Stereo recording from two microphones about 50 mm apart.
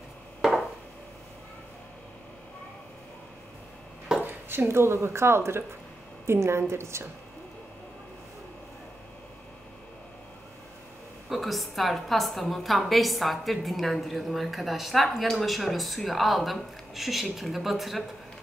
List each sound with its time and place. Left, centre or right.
4.2 s a woman's voice: right
11.2 s a woman's voice: centre